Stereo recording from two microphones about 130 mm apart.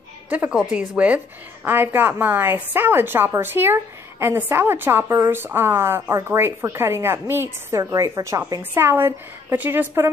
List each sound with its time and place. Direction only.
0.3 s a woman's voice: 10° right (ahead or behind)